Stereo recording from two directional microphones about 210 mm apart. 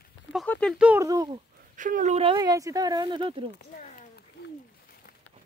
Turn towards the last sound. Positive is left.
turn(degrees=40)  # may be behind; listen again after turning